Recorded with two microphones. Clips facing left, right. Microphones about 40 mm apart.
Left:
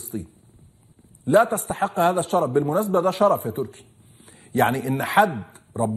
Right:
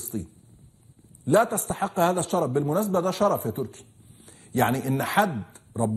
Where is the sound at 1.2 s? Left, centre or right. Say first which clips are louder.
Left 3 dB; centre.